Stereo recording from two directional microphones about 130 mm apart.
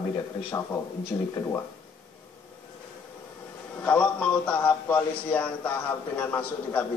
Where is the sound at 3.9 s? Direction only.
10° left (ahead or behind).